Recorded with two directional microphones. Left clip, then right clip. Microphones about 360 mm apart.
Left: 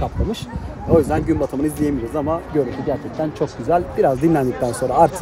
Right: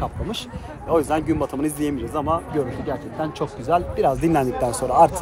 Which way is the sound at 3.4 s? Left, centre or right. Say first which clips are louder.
Left 2 dB; centre.